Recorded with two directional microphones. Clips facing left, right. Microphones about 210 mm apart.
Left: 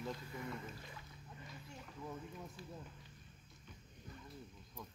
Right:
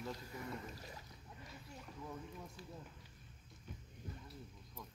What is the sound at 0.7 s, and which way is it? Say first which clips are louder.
Boat: right 1 dB; 40° right (ahead or behind).